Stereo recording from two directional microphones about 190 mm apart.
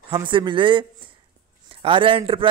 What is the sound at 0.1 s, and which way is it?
A man's voice, 25° right (ahead or behind).